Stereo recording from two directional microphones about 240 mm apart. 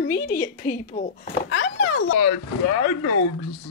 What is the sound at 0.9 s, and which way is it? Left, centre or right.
Speech, left.